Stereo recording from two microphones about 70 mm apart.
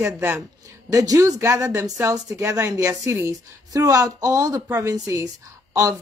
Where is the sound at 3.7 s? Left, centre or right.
Right.